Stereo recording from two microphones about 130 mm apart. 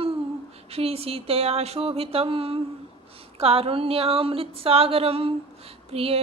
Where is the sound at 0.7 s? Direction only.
50° right (ahead or behind).